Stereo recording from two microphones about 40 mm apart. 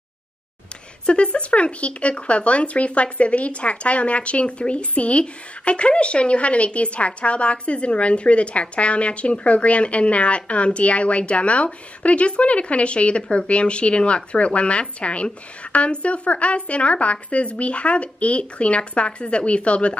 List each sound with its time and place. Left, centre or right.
1.0 s a woman's voice: left